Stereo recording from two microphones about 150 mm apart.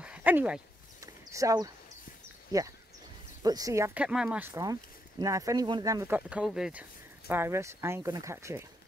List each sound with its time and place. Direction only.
0.0 s dog: 10° right (ahead or behind)
1.0 s a sound: 20° right (ahead or behind)
2.5 s speech: 25° right (ahead or behind)
4.0 s speech: 5° right (ahead or behind)
5.2 s speech: 20° right (ahead or behind)
6.1 s speech: 10° right (ahead or behind)